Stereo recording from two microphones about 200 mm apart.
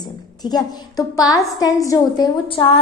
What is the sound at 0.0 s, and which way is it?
A woman's voice, 20° left (ahead or behind).